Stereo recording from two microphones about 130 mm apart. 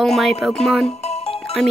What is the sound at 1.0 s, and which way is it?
Music, 55° left (ahead or behind).